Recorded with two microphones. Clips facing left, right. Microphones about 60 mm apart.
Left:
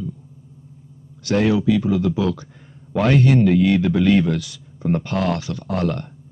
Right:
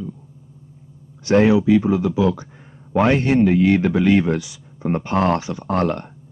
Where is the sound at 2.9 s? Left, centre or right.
Right.